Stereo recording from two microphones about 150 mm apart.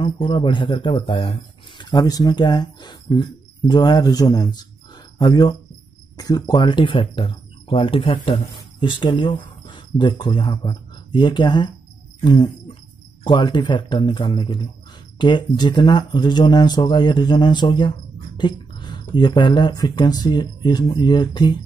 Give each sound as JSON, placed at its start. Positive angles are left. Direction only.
{"t": 0.0, "sound": "speech", "side_deg": 35}